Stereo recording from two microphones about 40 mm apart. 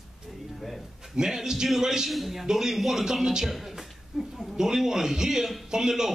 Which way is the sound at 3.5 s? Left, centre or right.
Centre.